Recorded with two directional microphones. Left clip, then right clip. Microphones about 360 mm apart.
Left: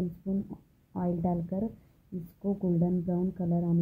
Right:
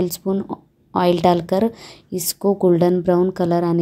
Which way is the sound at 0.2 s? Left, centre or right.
Right.